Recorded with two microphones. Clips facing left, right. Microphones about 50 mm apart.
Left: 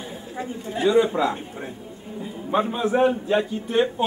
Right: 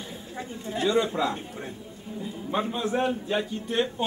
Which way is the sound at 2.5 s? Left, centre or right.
Centre.